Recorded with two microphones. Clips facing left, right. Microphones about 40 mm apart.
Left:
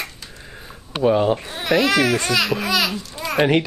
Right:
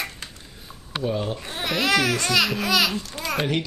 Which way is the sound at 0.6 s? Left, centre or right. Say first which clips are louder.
Left 8 dB; left.